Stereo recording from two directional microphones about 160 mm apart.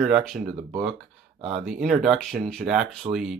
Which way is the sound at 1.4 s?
40° right (ahead or behind).